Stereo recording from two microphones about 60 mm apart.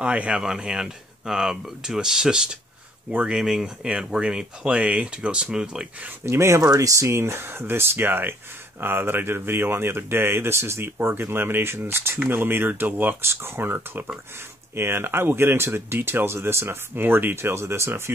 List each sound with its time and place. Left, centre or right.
0.0 s speech: centre
3.1 s speech: right
3.3 s speech: centre
6.2 s speech: right
6.6 s speech: right
13.2 s speech: right